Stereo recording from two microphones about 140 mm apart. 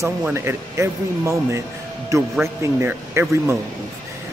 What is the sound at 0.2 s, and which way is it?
Speech, 15° right (ahead or behind).